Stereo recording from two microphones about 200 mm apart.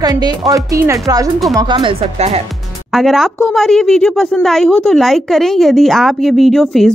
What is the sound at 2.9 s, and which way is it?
A woman's voice, centre (ahead or behind).